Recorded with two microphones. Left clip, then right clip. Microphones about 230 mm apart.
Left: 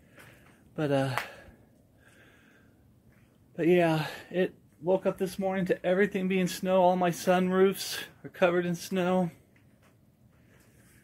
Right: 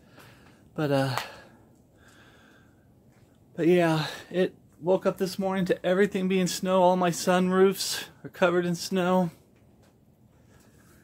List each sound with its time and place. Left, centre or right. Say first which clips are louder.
0.7 s speech: right 2 dB; centre
3.5 s speech: right 2 dB; centre